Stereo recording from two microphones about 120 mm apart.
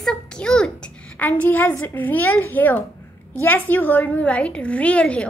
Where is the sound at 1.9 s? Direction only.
15° left (ahead or behind).